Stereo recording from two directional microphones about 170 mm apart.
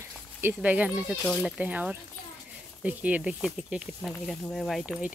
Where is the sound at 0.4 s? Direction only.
10° right (ahead or behind).